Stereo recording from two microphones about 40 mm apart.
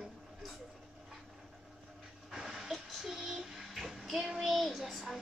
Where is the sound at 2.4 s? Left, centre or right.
Centre.